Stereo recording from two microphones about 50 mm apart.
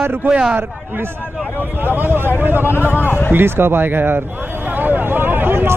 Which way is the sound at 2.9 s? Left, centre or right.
Left.